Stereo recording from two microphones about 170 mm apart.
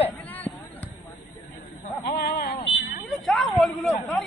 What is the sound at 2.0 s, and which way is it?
Speech, 65° left (ahead or behind).